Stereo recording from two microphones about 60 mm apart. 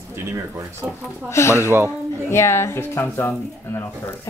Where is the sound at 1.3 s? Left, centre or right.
Left.